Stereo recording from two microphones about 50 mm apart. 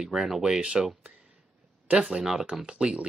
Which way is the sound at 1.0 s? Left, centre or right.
Centre.